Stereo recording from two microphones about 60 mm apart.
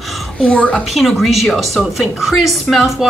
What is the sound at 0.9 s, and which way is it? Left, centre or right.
A woman's voice, centre.